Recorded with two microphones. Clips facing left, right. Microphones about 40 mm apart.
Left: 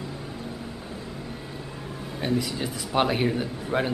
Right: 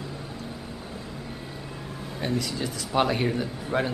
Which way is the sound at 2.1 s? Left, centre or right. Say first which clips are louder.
Left 2 dB; centre.